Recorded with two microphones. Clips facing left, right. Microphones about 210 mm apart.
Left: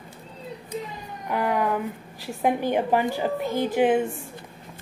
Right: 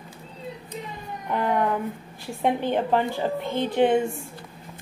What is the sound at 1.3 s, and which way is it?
A woman's voice, 5° left (ahead or behind).